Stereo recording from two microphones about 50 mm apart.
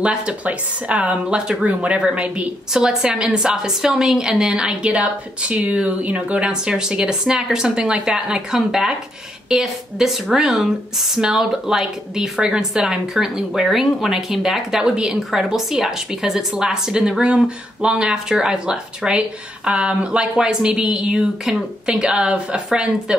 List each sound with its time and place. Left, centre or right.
0.0 s speech: right
2.7 s speech: centre